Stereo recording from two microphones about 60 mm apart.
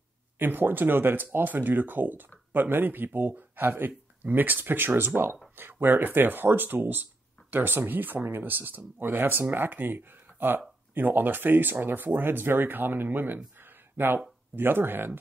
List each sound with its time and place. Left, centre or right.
0.4 s speech: right
13.6 s a sound: right
14.5 s speech: right